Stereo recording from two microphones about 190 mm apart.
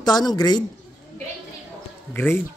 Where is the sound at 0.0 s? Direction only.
20° left (ahead or behind).